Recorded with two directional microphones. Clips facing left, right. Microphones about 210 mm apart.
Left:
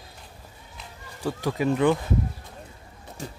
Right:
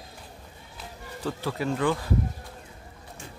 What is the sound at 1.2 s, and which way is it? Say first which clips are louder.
Speech: left 4 dB; 15° left (ahead or behind).